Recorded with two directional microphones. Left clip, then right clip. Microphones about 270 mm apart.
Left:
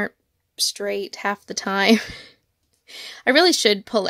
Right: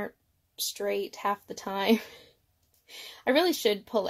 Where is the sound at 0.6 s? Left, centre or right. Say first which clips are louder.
Left 7 dB; left.